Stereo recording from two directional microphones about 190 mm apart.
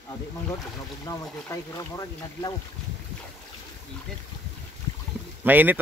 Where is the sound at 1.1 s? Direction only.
20° left (ahead or behind).